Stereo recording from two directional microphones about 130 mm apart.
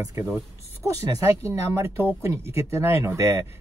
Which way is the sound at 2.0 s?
20° right (ahead or behind).